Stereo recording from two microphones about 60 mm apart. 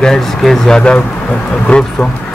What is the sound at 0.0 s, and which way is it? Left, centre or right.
A man's voice, centre.